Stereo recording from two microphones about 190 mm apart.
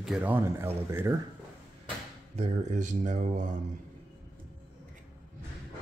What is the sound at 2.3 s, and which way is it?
Speech, 35° right (ahead or behind).